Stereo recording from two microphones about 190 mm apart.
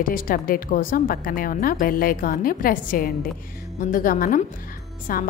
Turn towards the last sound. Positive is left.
turn(degrees=50)  # may be behind; listen again after turning